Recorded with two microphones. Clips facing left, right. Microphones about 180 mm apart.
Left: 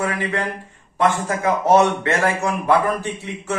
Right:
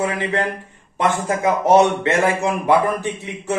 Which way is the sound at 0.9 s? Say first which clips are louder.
Even; 20° right (ahead or behind).